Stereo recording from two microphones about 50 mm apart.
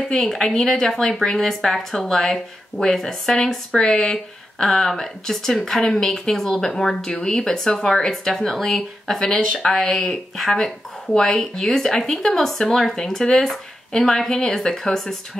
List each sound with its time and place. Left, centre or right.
0.1 s speech: centre
9.2 s speech: centre